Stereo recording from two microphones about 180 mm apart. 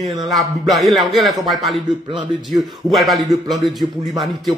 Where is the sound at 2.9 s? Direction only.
Centre (ahead or behind).